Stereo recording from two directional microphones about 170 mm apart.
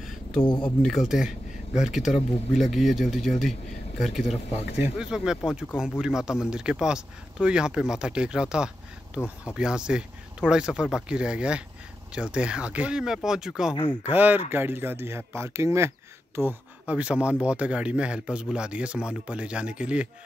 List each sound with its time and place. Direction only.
0.5 s speech: 25° left (ahead or behind)
0.8 s speech: centre (ahead or behind)